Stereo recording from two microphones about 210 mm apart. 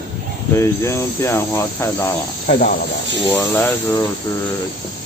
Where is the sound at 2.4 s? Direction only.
40° left (ahead or behind).